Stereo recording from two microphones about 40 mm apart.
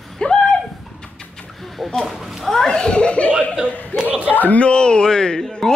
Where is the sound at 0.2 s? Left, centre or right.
Centre.